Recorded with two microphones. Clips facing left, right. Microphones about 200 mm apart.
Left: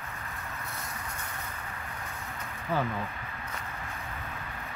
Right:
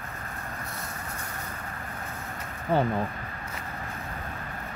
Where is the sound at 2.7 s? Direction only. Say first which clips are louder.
Right 6 dB; 30° right (ahead or behind).